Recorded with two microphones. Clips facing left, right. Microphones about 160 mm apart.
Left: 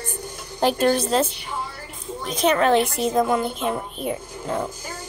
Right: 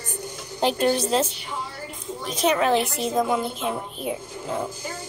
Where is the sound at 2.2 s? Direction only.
55° left (ahead or behind).